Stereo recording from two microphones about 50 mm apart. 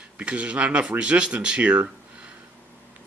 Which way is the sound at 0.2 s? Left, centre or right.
Right.